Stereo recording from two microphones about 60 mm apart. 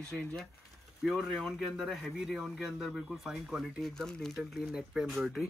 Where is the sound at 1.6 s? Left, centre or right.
Centre.